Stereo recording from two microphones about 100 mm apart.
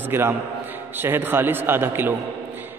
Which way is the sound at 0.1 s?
20° right (ahead or behind).